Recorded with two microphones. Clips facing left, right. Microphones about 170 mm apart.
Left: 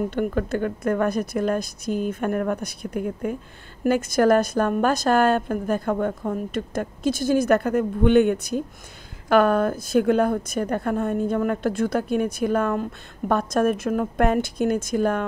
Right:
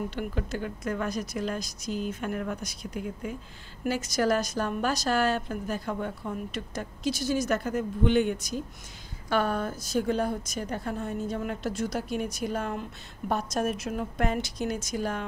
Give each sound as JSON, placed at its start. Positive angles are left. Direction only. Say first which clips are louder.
{"t": 0.1, "sound": "a woman's voice", "louder": "left 9 dB", "side_deg": 55}